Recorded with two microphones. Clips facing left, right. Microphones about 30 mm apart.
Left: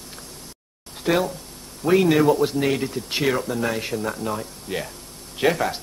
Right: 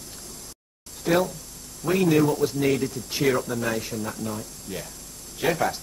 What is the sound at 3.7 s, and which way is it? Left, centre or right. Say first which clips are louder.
Speech: left 4 dB; left.